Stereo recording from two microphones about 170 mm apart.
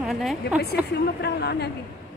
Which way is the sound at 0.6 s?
70° left (ahead or behind).